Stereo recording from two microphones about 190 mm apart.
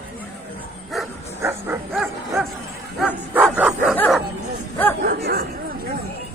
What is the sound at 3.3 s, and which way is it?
Bow-wow, 10° right (ahead or behind).